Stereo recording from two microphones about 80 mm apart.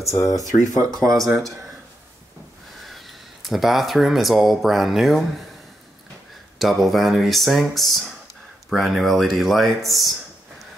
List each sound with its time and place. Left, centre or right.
0.0 s speech: left
0.4 s speech: right
2.9 s speech: centre
6.6 s speech: centre